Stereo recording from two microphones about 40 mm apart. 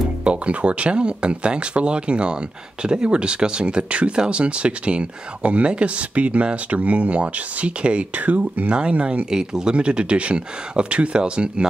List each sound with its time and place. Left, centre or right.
0.2 s speech: right
8.2 s speech: right
8.7 s speech: right
9.3 s speech: centre